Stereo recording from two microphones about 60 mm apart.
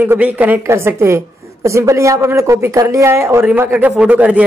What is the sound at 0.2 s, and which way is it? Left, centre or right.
Speech, right.